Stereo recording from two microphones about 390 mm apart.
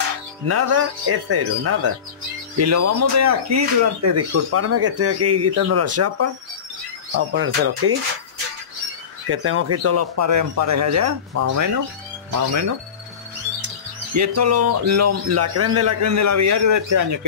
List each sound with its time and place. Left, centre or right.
0.5 s speech: right
7.3 s speech: right
9.3 s speech: right
14.1 s speech: right